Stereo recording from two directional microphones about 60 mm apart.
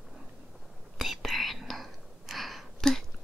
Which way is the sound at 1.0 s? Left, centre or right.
Centre.